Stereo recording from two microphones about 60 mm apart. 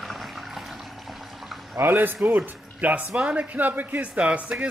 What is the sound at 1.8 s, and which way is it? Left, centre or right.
Speech, right.